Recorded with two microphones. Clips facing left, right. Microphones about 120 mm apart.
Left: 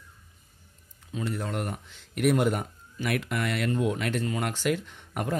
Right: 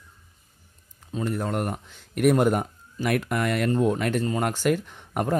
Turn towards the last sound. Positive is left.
turn(degrees=-45)  # may be behind; listen again after turning